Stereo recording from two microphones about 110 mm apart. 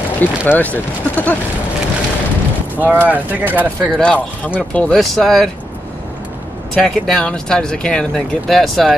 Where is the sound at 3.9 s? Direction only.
10° left (ahead or behind).